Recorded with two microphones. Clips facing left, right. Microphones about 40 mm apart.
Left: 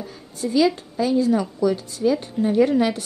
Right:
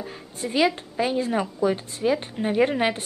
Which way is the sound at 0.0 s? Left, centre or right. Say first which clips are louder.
Left 3 dB; right.